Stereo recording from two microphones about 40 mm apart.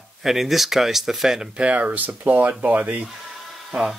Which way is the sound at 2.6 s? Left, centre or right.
Right.